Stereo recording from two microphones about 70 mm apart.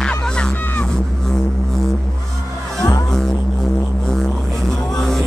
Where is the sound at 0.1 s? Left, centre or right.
Centre.